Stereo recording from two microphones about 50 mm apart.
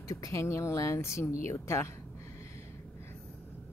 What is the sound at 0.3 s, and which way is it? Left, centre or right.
Speech, left.